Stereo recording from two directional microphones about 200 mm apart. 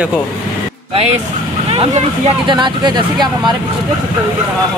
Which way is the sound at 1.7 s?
30° right (ahead or behind).